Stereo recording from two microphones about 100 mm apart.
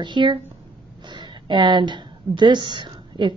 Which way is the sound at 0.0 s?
50° right (ahead or behind).